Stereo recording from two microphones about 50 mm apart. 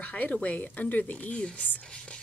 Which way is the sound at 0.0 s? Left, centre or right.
Left.